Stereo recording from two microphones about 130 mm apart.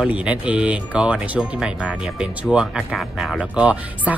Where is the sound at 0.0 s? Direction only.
10° right (ahead or behind).